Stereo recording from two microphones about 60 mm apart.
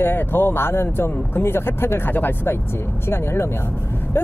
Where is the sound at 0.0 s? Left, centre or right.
Left.